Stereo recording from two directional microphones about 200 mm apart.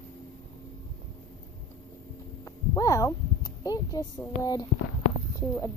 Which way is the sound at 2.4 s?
15° left (ahead or behind).